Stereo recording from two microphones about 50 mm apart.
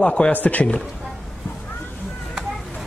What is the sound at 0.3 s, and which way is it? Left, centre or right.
Speech, left.